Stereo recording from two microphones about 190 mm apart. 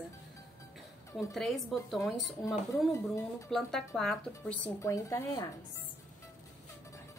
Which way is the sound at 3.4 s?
Centre (ahead or behind).